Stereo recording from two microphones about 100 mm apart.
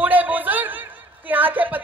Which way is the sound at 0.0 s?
15° right (ahead or behind).